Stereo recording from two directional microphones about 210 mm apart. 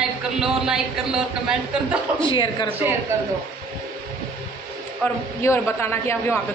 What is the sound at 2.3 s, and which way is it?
Speech, 20° left (ahead or behind).